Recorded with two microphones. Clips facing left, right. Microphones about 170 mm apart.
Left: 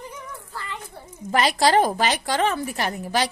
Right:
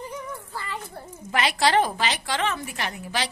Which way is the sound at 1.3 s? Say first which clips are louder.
Left 3 dB; 40° left (ahead or behind).